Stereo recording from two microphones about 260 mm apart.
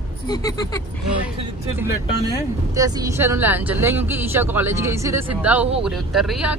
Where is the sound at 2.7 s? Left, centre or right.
Centre.